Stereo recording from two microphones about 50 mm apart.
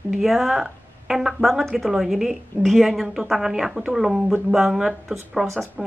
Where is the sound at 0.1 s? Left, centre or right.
Centre.